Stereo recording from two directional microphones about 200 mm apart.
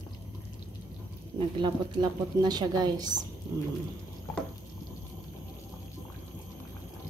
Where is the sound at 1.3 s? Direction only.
20° right (ahead or behind).